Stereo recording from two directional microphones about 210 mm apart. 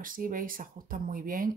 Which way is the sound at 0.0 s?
40° right (ahead or behind).